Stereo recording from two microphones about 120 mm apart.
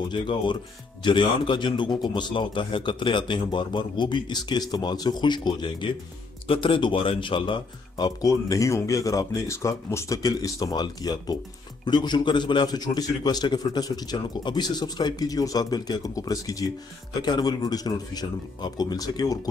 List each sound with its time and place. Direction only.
0.1 s a man's voice: 40° left (ahead or behind)
8.2 s a man's voice: 30° left (ahead or behind)